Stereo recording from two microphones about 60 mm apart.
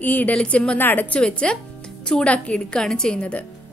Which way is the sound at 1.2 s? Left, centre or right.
Centre.